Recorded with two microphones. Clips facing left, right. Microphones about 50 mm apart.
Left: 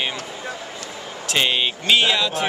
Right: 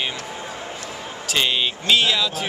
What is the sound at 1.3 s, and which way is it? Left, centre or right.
Speech, centre.